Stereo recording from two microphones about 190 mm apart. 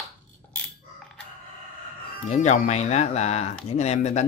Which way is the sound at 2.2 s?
40° left (ahead or behind).